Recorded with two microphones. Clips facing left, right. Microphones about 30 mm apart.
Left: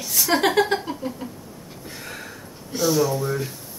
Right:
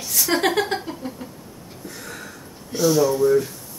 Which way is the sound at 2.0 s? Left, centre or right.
Left.